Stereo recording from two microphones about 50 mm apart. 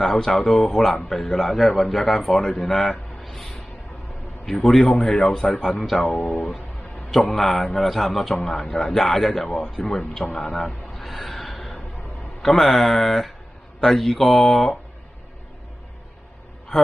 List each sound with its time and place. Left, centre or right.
0.0 s a man's voice: centre
10.3 s a sound: centre
12.4 s a man's voice: centre
16.7 s a woman's voice: centre